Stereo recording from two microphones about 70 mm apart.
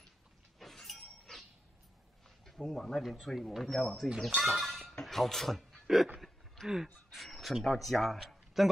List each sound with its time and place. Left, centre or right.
0.6 s shatter: centre
2.4 s speech: centre
6.2 s a sound: centre
7.1 s speech: centre